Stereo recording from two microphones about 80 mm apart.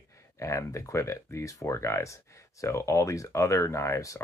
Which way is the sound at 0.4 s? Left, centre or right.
Left.